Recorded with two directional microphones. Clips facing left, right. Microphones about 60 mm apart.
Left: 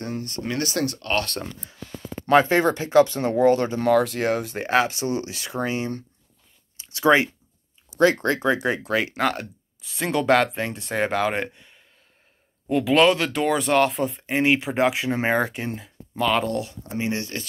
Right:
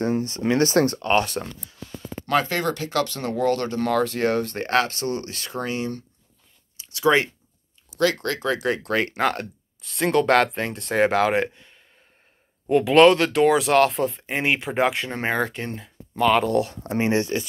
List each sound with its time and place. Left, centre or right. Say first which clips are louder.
0.0 s speech: right 7 dB; right
1.0 s speech: right 4 dB; centre
2.2 s speech: left 5 dB; left
6.8 s a sound: left 2 dB; left
8.0 s speech: left 3 dB; left; by 16.5 s centre
16.7 s speech: right 4 dB; right
17.1 s speech: right 6 dB; right